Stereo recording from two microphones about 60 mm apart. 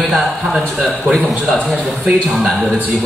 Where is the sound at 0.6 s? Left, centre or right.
Centre.